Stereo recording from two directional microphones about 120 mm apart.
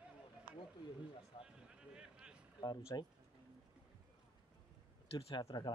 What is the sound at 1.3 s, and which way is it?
Speech, 50° left (ahead or behind).